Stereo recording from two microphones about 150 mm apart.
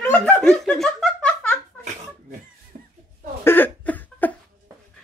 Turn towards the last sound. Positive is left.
turn(degrees=10)  # may be behind; listen again after turning